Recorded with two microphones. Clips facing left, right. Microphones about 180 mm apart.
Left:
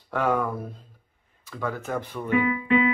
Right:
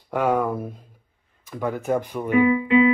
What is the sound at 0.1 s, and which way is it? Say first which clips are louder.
Speech: right 3 dB; 15° right (ahead or behind).